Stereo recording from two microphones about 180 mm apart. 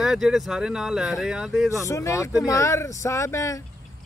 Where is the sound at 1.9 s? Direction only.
15° left (ahead or behind).